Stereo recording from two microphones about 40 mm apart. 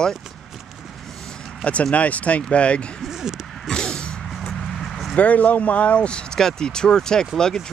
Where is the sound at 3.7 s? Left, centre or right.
Centre.